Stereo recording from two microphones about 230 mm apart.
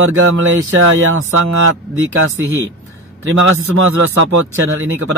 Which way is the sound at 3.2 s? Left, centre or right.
Right.